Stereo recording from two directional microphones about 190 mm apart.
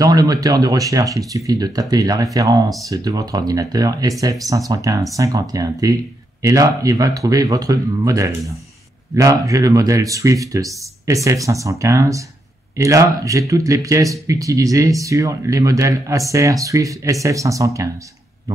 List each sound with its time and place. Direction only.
0.0 s speech: 20° right (ahead or behind)